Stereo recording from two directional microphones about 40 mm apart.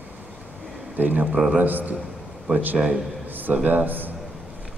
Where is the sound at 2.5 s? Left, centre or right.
Right.